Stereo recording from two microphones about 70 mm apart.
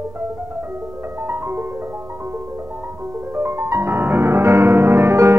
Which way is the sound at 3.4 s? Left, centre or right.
Right.